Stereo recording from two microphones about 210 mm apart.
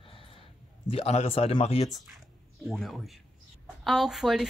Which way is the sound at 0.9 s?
30° left (ahead or behind).